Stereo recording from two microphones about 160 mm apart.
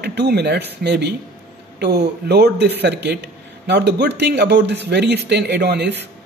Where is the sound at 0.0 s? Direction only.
90° right.